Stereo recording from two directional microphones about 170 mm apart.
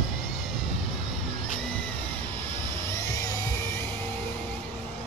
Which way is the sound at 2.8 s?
15° left (ahead or behind).